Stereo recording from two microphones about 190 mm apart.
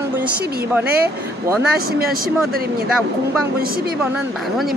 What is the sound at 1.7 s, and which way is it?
Speech, 55° right (ahead or behind).